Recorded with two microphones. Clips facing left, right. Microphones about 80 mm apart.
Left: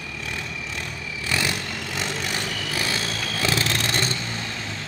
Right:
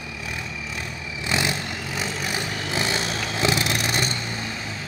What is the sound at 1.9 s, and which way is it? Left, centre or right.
Vehicle, centre.